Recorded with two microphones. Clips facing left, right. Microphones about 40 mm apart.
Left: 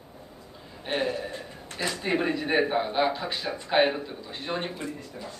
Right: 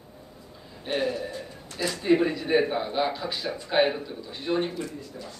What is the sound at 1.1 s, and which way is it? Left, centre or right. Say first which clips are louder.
Speech: right 1 dB; left.